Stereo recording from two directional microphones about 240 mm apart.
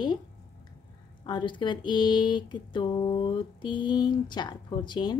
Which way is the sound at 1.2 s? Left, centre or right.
Centre.